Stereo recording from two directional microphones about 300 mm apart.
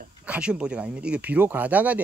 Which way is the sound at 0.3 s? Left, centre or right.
Centre.